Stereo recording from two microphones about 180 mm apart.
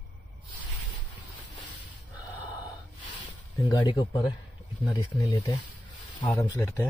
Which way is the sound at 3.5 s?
20° left (ahead or behind).